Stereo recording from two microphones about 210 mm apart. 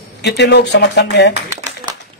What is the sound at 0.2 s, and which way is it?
A man's voice, 55° left (ahead or behind).